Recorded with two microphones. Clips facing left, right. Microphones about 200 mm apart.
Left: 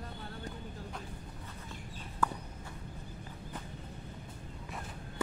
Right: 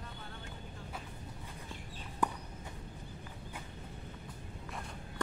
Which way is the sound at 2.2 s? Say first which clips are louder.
Even; 20° right (ahead or behind).